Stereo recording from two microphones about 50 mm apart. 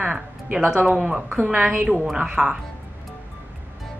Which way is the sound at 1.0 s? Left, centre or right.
Centre.